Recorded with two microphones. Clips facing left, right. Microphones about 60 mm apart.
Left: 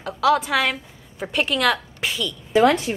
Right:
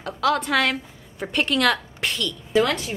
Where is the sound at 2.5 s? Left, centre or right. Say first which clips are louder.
Left 4 dB; left.